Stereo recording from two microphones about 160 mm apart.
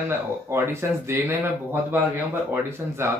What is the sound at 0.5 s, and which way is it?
Speech, 15° right (ahead or behind).